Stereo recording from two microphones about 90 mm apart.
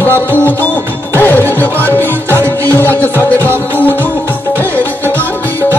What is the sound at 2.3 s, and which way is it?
Music, 30° right (ahead or behind).